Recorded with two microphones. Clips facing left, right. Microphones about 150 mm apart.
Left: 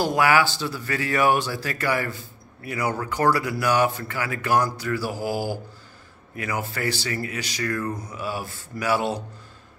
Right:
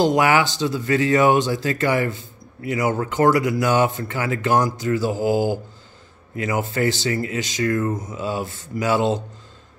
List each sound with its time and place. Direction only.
0.0 s speech: 20° right (ahead or behind)